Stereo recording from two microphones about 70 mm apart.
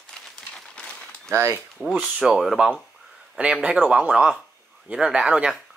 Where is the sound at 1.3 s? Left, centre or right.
Right.